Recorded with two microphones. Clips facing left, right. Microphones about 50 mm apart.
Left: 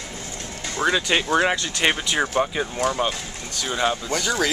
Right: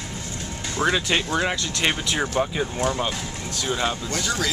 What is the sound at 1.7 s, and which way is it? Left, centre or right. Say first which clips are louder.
Speech: left 2 dB; centre.